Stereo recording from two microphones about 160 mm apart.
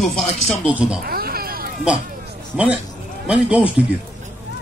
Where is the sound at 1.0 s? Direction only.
70° right (ahead or behind).